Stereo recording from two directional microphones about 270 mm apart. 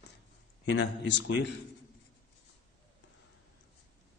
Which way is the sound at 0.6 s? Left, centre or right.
Left.